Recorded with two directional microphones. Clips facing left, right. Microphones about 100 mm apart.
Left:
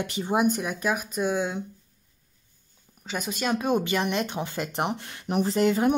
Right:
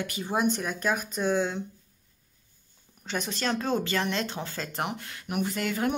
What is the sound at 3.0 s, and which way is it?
Speech, 5° left (ahead or behind).